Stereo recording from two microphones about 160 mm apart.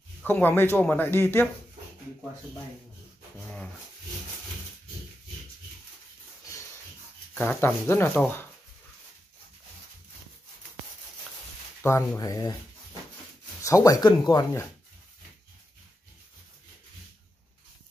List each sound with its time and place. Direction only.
0.2 s speech: 10° left (ahead or behind)
7.3 s speech: 10° left (ahead or behind)
11.8 s speech: 15° left (ahead or behind)
13.6 s speech: 20° left (ahead or behind)